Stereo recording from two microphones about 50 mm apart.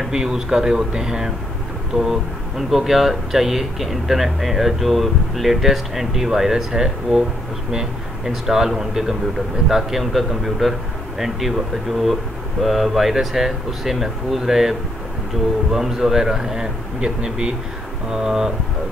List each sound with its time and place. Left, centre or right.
0.1 s speech: centre
2.7 s speech: centre